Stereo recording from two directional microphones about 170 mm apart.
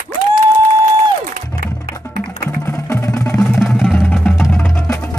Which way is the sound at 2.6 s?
15° left (ahead or behind).